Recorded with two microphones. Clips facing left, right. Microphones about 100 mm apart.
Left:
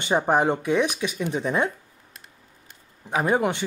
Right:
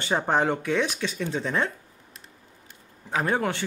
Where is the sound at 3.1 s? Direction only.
15° left (ahead or behind).